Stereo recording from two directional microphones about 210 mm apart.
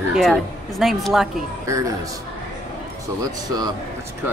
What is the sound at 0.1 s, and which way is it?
Speech, centre (ahead or behind).